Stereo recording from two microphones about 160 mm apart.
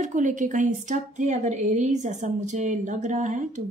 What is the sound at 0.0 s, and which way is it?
Speech, 50° right (ahead or behind).